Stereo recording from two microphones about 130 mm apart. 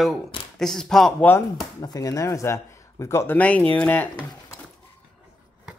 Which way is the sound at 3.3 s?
10° left (ahead or behind).